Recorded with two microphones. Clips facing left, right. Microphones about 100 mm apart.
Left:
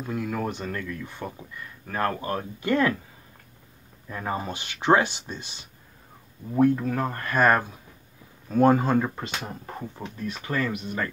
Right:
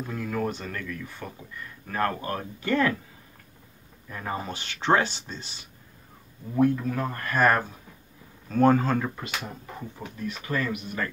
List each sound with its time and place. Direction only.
0.1 s a man's voice: 15° left (ahead or behind)
4.1 s speech: 25° left (ahead or behind)
6.5 s a man's voice: 35° left (ahead or behind)
10.4 s a man's voice: 30° left (ahead or behind)